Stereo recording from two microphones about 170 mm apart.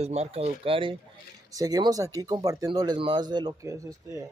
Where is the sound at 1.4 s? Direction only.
20° right (ahead or behind).